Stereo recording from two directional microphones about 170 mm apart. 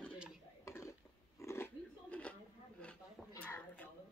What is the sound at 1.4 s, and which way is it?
Roaring cats, 15° left (ahead or behind).